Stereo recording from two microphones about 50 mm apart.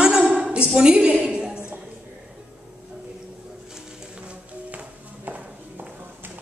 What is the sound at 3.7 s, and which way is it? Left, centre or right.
Music, centre.